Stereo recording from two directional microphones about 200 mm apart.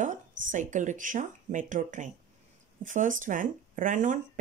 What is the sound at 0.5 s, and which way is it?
Speech, 40° right (ahead or behind).